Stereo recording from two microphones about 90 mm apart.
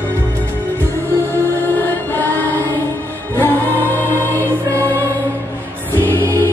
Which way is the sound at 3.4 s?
20° left (ahead or behind).